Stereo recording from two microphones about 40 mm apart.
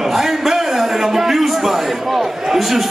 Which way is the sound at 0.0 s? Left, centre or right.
Centre.